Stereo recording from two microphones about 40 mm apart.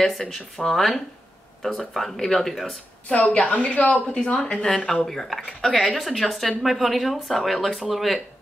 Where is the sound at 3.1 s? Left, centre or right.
Left.